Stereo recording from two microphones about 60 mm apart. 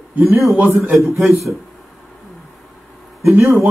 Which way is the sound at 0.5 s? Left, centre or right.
Right.